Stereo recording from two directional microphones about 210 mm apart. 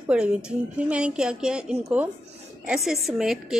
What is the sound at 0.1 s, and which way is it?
A woman's voice, 5° right (ahead or behind).